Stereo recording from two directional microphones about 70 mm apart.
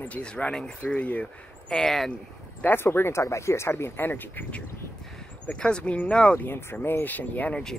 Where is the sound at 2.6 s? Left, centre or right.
Left.